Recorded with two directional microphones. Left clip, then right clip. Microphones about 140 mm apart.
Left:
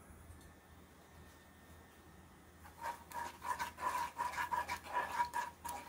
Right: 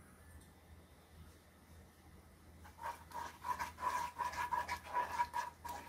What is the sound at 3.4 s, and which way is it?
Dog, centre (ahead or behind).